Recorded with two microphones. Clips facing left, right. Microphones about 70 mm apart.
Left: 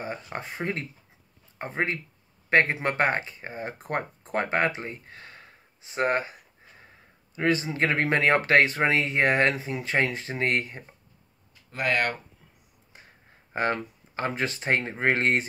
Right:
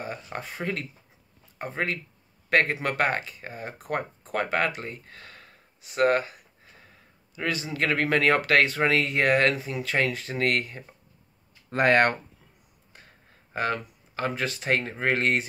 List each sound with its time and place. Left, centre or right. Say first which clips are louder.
0.0 s speech: left 1 dB; left
7.3 s speech: left 4 dB; left
11.7 s speech: right 6 dB; right
13.5 s speech: left 1 dB; left